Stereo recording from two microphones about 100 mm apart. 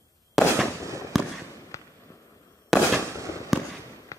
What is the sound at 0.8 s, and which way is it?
Fireworks, 30° right (ahead or behind).